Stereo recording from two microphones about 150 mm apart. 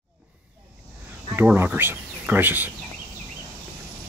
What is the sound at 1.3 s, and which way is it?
Speech, 15° right (ahead or behind).